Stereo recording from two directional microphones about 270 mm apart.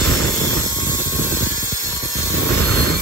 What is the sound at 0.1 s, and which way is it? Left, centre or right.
Vehicle, right.